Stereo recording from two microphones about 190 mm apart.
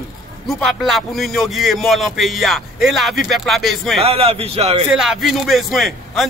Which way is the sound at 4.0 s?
30° right (ahead or behind).